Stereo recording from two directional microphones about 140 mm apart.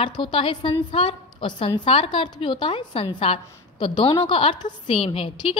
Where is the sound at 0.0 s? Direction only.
35° left (ahead or behind).